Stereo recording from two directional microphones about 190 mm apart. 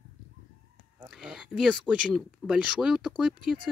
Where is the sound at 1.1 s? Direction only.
5° right (ahead or behind).